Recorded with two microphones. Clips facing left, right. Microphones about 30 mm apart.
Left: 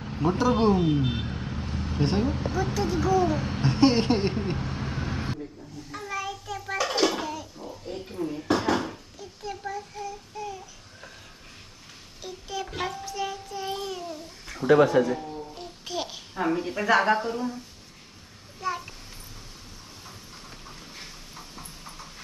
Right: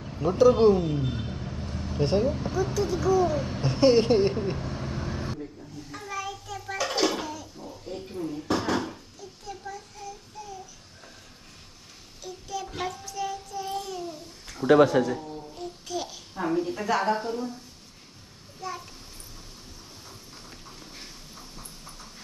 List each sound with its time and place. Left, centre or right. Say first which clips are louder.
0.0 s a sound: left 2 dB; left
0.4 s speech: right 5 dB; centre
0.7 s speech: left 4 dB; left
5.4 s bathtub: even; centre
7.3 s a sound: left 2 dB; centre
8.5 s dishes: left 2 dB; centre
9.4 s child singing: left 5 dB; left
12.2 s child singing: left 1 dB; left
14.6 s speech: right 1 dB; centre
14.9 s a child's voice: left 2 dB; left
18.6 s a child's voice: left 5 dB; left